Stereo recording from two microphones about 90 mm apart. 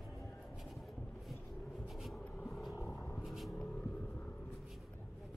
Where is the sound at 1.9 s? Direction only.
Centre (ahead or behind).